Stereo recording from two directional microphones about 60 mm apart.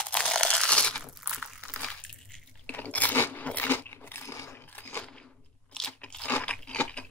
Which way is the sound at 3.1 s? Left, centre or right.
Left.